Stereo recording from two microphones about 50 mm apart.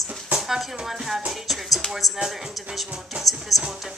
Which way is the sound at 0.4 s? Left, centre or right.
Centre.